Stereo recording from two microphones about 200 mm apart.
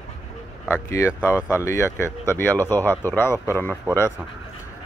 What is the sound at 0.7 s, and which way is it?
Speech, 10° left (ahead or behind).